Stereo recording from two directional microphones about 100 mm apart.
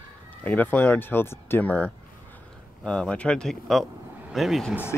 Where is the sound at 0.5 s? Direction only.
15° left (ahead or behind); by 4.7 s centre (ahead or behind).